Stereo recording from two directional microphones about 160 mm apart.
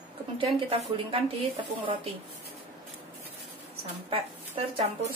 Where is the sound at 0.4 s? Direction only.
35° right (ahead or behind).